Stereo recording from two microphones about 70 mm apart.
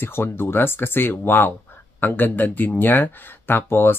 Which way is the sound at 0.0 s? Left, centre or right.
Left.